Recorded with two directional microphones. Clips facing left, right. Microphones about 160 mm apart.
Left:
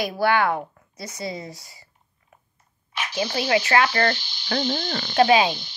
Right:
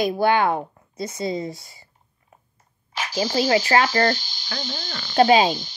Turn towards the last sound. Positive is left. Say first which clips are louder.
# right 2 dB
turn(degrees=-35)  # may be behind; listen again after turning